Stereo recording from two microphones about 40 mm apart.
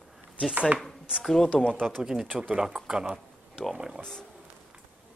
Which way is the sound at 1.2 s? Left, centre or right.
Centre.